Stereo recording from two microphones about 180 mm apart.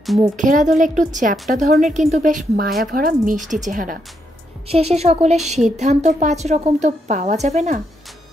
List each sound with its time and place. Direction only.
0.4 s a woman's voice: 45° right (ahead or behind)
4.6 s a woman's voice: 35° right (ahead or behind)